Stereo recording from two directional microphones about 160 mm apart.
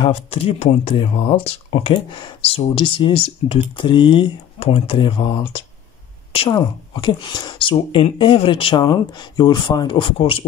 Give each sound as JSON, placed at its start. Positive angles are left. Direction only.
{"t": 0.0, "sound": "speech", "side_deg": 40}